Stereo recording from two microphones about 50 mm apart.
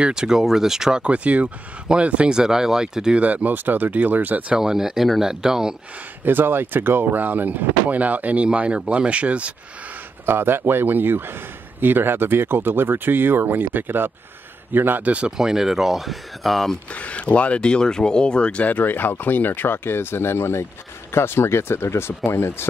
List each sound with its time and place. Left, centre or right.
0.0 s speech: centre
1.0 s speech: right
2.3 s speech: centre
3.2 s speech: right
4.6 s speech: centre
6.2 s speech: right
8.5 s speech: right
10.2 s speech: right
15.0 s speech: right
15.3 s speech: centre
16.9 s speech: left